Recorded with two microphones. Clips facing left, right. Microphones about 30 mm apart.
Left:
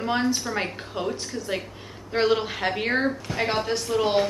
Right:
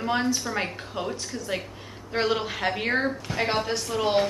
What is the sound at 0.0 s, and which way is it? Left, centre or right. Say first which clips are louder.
A woman's voice: left 1 dB; centre.